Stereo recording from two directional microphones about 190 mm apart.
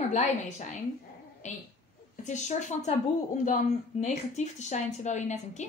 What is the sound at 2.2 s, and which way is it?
Speech, 40° left (ahead or behind).